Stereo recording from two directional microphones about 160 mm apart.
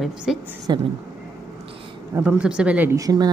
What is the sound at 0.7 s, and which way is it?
Speech, 25° right (ahead or behind).